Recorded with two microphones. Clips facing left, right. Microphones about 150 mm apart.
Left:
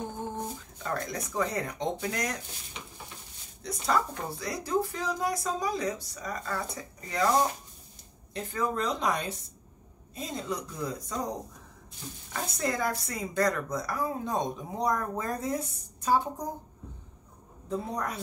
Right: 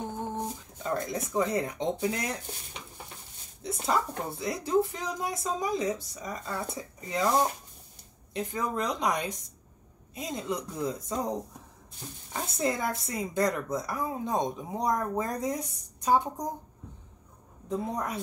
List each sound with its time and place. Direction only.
0.8 s speech: 20° right (ahead or behind)
3.6 s speech: 25° right (ahead or behind)
8.3 s speech: 20° right (ahead or behind)
17.6 s speech: 20° right (ahead or behind)